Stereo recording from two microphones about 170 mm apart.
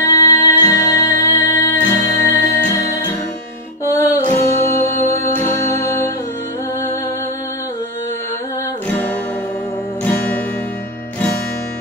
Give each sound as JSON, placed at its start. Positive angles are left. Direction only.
{"t": 0.0, "sound": "music", "side_deg": 20}
{"t": 10.0, "sound": "music", "side_deg": 10}